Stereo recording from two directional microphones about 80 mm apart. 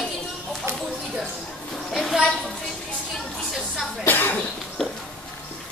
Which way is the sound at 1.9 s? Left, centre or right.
Centre.